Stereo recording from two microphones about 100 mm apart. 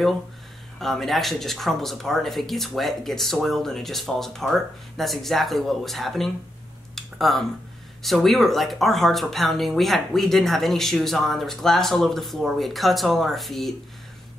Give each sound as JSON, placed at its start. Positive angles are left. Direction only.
{"t": 0.7, "sound": "speech", "side_deg": 0}
{"t": 7.0, "sound": "a sound", "side_deg": 0}
{"t": 8.0, "sound": "speech", "side_deg": 0}